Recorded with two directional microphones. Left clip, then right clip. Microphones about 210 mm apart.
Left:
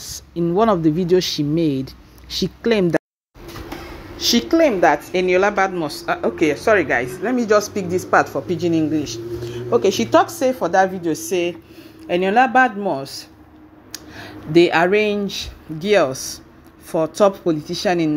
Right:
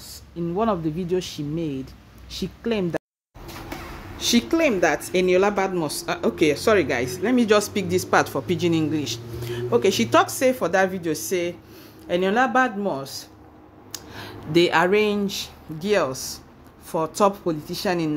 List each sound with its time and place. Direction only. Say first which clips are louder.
0.4 s speech: left 7 dB; 30° left (ahead or behind)
4.2 s a woman's voice: left 5 dB; 5° left (ahead or behind)
5.1 s speech: left 3 dB; 20° right (ahead or behind)
7.3 s speech: left 3 dB; 35° right (ahead or behind)
8.2 s a man's voice: left 3 dB; 20° right (ahead or behind); by 18.1 s 10° left (ahead or behind)